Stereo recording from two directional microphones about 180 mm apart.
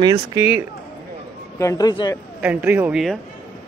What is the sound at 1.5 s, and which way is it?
Speech, 20° left (ahead or behind).